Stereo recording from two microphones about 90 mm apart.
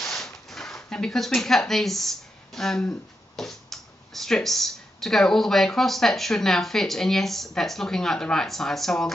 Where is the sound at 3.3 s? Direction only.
5° left (ahead or behind).